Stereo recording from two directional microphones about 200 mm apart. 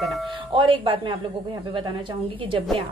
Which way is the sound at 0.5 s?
25° right (ahead or behind).